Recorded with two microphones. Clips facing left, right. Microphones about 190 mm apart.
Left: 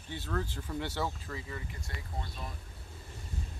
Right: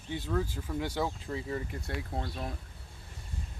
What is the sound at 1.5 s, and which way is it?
Speech, 55° right (ahead or behind).